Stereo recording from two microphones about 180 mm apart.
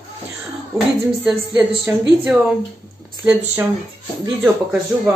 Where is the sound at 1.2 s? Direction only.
10° right (ahead or behind).